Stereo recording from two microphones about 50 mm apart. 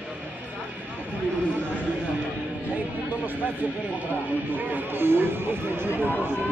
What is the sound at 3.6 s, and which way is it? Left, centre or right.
Speech, right.